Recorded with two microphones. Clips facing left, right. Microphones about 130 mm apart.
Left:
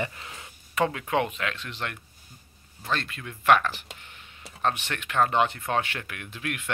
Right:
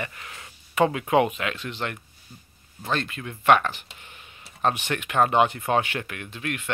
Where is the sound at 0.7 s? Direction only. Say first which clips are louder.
Right 5 dB; 10° right (ahead or behind).